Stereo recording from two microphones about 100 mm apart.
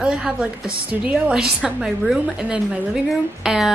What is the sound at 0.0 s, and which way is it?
A woman's voice, 10° right (ahead or behind).